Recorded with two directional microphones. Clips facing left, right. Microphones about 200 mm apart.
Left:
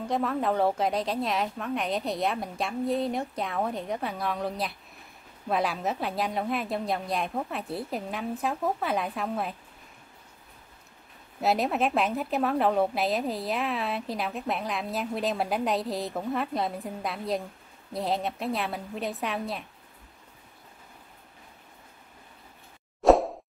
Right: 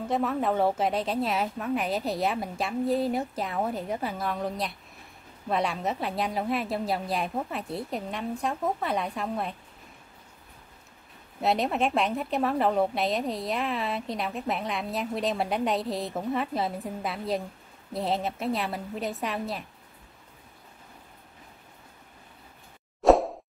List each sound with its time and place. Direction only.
0.0 s a woman's voice: centre (ahead or behind)
11.4 s a woman's voice: centre (ahead or behind)
23.0 s plop: centre (ahead or behind)